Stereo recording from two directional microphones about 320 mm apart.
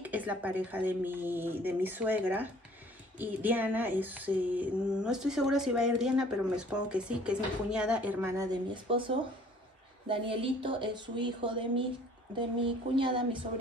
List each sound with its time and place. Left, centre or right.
0.0 s female singing: centre
10.0 s speech: centre